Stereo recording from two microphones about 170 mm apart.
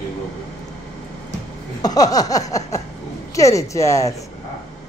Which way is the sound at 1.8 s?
20° left (ahead or behind).